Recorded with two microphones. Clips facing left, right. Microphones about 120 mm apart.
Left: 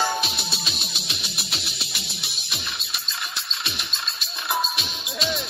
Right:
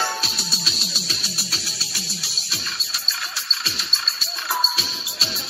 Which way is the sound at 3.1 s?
20° left (ahead or behind).